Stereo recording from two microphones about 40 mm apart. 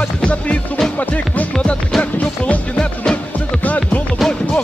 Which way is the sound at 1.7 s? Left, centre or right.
Left.